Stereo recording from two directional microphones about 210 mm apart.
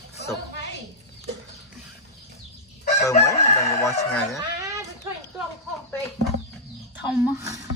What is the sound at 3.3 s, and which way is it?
Crowing, 15° left (ahead or behind).